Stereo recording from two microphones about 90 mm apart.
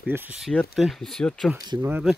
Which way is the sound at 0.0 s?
20° right (ahead or behind).